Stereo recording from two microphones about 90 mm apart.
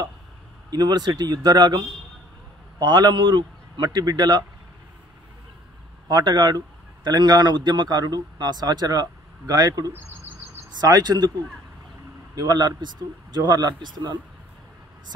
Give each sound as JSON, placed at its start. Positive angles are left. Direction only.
{"t": 0.7, "sound": "a man's voice", "side_deg": -50}
{"t": 6.0, "sound": "a man's voice", "side_deg": -50}
{"t": 9.9, "sound": "bird vocalization", "side_deg": -20}
{"t": 10.8, "sound": "a man's voice", "side_deg": -45}
{"t": 12.4, "sound": "a man's voice", "side_deg": -45}